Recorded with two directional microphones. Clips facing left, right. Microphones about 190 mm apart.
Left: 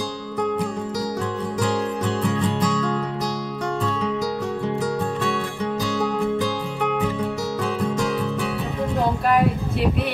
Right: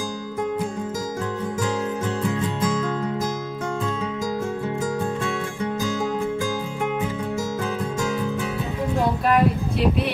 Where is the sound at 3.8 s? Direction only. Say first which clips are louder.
Left 1 dB; 65° left (ahead or behind).